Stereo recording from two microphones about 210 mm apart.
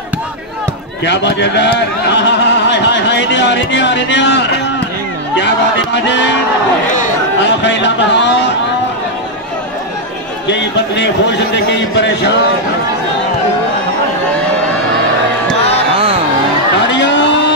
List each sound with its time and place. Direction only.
1.0 s speech: 55° left (ahead or behind)
7.4 s speech: 55° left (ahead or behind)
10.5 s speech: 55° left (ahead or behind)
16.8 s a sound: 60° left (ahead or behind)